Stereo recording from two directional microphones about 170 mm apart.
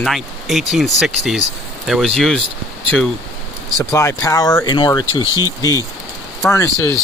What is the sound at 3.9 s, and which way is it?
Speech, 15° left (ahead or behind).